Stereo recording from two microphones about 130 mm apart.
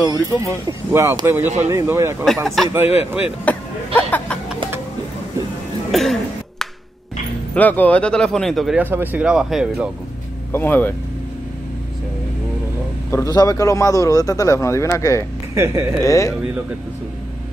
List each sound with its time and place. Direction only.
0.0 s speech: 25° right (ahead or behind)
2.4 s a man's voice: centre (ahead or behind)
5.9 s cough: centre (ahead or behind)
7.5 s speech: 10° left (ahead or behind)
8.7 s speech: 15° right (ahead or behind)
10.5 s speech: 15° left (ahead or behind)
13.1 s a man's voice: 25° left (ahead or behind)
15.5 s speech: 20° right (ahead or behind)
16.0 s a man's voice: 25° left (ahead or behind)